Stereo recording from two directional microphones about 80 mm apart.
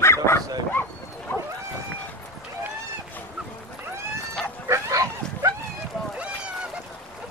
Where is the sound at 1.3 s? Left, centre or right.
Left.